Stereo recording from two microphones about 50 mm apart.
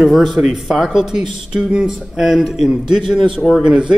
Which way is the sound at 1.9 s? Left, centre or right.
Centre.